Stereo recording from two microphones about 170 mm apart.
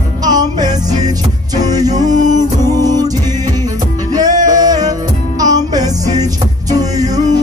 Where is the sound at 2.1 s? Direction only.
45° right (ahead or behind).